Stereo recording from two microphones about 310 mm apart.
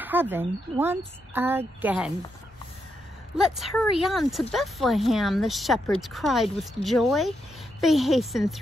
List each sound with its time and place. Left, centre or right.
0.0 s speech: centre
3.3 s speech: centre